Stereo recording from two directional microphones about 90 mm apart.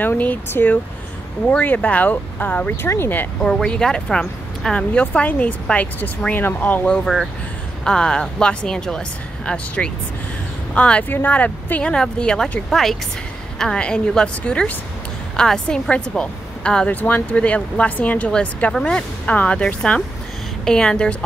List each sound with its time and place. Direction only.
0.0 s a woman's voice: 20° left (ahead or behind)
3.4 s a woman's voice: 10° left (ahead or behind)
7.8 s a woman's voice: 10° left (ahead or behind)